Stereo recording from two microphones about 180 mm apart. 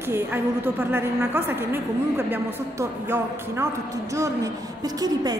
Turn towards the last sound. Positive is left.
turn(degrees=-20)  # may be behind; listen again after turning